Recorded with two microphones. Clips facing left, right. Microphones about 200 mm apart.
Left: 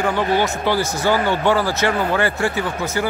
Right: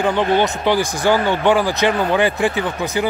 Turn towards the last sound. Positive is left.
turn(degrees=-15)  # may be behind; listen again after turning